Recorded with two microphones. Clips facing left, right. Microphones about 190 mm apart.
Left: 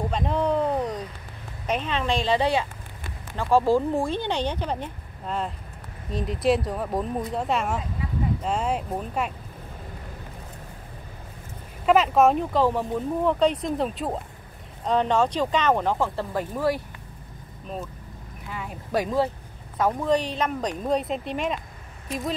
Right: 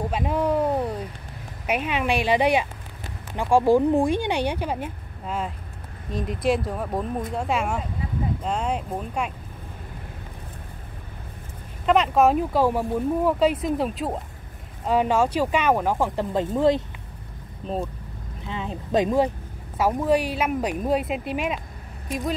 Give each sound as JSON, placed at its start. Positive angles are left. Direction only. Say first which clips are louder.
{"t": 0.1, "sound": "a sound", "louder": "right 1 dB", "side_deg": -5}
{"t": 1.7, "sound": "speech", "louder": "right 2 dB", "side_deg": -10}
{"t": 11.8, "sound": "speech", "louder": "even", "side_deg": 5}